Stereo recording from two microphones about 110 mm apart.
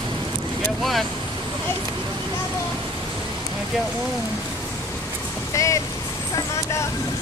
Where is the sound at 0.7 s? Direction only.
Centre (ahead or behind).